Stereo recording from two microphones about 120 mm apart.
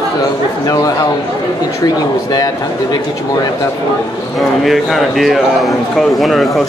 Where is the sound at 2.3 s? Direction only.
35° left (ahead or behind).